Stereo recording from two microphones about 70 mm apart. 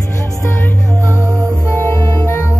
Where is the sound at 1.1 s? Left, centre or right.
Right.